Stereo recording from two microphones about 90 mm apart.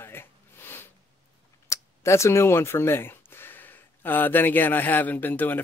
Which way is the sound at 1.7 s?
35° left (ahead or behind).